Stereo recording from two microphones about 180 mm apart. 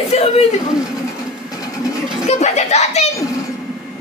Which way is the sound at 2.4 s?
40° left (ahead or behind).